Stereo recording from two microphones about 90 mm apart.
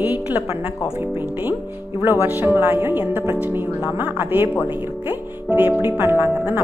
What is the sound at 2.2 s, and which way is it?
Speech, 25° right (ahead or behind).